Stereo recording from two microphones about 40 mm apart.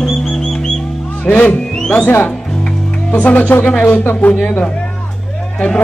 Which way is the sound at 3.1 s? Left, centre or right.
Left.